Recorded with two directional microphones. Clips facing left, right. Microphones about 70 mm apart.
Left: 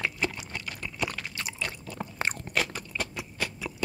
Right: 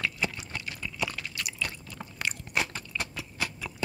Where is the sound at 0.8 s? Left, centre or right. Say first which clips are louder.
Left 1 dB; left.